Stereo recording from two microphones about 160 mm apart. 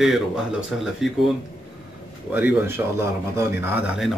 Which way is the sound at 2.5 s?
10° right (ahead or behind).